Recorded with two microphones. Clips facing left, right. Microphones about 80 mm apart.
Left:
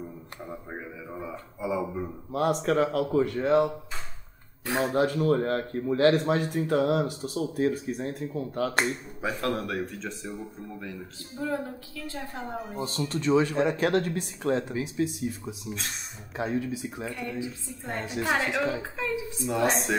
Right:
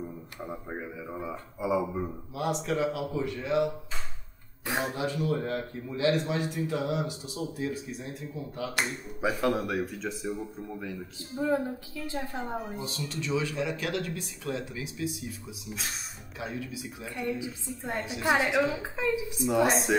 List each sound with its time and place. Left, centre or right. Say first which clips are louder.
0.7 s a woman's voice: right 1 dB; centre
2.3 s speech: left 6 dB; left
4.9 s speech: left 6 dB; left
9.2 s speech: right 2 dB; centre
11.3 s a woman's voice: right 3 dB; centre
12.3 s speech: right 1 dB; centre
12.7 s speech: left 5 dB; left
17.1 s a woman's voice: right 1 dB; centre
19.5 s speech: right 1 dB; centre